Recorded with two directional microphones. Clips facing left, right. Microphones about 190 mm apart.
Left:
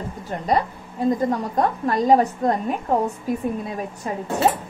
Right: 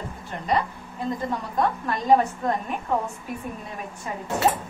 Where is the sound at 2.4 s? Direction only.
40° left (ahead or behind).